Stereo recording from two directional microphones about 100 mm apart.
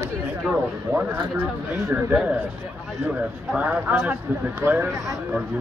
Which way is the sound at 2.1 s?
10° right (ahead or behind).